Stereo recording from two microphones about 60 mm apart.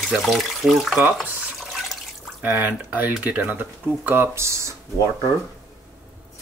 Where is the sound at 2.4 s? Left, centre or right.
Right.